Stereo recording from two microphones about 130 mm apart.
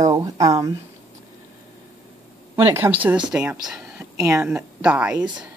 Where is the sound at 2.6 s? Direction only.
20° right (ahead or behind).